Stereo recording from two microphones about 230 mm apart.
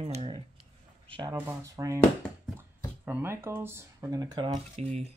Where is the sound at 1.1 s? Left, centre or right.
Right.